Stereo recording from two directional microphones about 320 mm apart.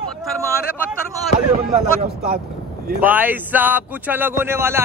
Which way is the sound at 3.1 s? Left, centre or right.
Centre.